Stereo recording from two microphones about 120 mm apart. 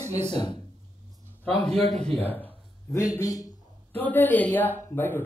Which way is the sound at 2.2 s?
15° left (ahead or behind).